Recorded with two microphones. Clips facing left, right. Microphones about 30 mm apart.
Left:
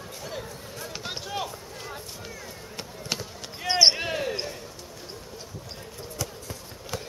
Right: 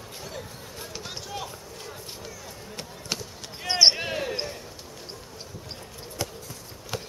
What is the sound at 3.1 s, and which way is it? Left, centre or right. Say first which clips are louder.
Basketball bounce: left 1 dB; centre.